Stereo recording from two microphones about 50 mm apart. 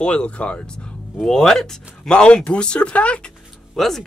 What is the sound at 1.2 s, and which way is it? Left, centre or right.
Speech, centre.